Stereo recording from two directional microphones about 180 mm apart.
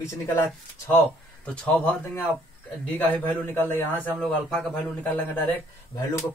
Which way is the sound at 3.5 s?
10° left (ahead or behind).